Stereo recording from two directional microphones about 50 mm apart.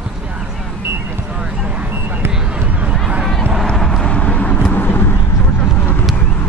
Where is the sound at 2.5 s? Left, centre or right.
Right.